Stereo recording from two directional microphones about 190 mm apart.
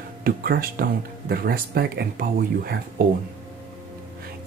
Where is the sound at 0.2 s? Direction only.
50° right (ahead or behind).